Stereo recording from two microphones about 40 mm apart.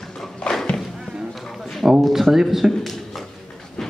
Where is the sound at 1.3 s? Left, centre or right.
Centre.